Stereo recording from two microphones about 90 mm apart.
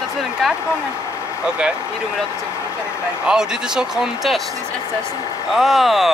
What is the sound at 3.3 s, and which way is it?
Speech, 5° right (ahead or behind).